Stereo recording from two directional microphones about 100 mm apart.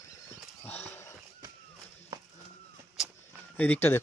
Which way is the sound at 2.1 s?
40° right (ahead or behind).